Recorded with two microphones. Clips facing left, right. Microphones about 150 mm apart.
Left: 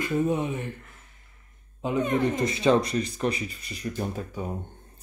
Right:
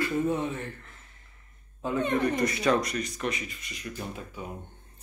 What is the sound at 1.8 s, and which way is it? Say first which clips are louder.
Speech: left 2 dB; 15° left (ahead or behind).